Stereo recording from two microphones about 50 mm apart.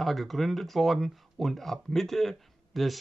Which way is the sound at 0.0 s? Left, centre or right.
Centre.